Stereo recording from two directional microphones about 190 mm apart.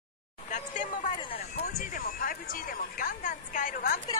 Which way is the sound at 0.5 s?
40° left (ahead or behind).